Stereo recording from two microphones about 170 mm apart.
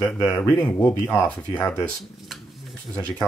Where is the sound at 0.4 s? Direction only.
10° left (ahead or behind).